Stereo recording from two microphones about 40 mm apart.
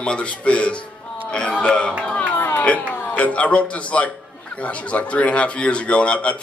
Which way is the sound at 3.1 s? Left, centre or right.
Left.